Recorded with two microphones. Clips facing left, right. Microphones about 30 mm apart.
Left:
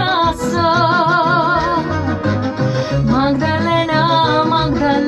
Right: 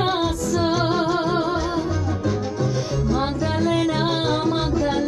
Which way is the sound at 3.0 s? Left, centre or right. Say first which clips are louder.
Left 9 dB; left.